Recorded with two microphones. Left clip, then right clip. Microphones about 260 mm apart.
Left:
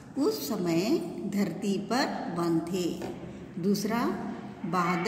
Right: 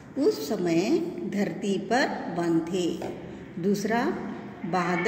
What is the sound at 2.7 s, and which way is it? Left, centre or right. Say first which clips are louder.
Speech: right 4 dB; left.